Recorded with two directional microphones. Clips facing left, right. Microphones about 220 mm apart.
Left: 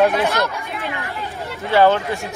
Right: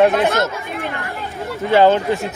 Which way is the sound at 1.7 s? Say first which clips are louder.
Right 2 dB; 15° right (ahead or behind).